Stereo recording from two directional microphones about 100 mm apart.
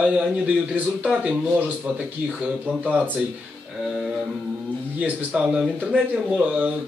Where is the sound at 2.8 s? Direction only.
15° right (ahead or behind).